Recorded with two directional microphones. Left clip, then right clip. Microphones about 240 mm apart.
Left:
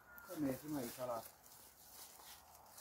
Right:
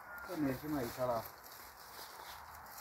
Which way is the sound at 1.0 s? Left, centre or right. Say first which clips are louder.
Right 8 dB; left.